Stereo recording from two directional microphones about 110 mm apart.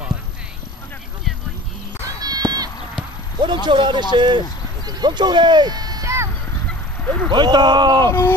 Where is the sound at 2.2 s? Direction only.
35° right (ahead or behind).